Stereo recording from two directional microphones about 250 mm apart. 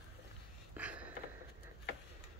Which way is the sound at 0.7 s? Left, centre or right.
Centre.